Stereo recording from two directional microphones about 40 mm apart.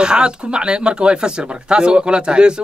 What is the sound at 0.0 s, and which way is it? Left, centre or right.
Speech, right.